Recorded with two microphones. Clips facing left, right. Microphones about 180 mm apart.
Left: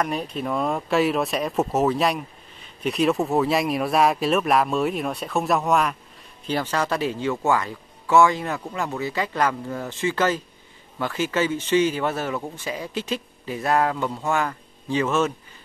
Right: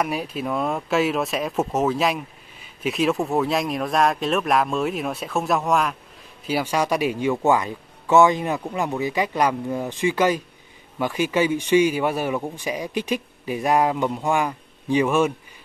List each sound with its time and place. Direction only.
0.0 s speech: 10° right (ahead or behind)
6.4 s speech: 10° right (ahead or behind)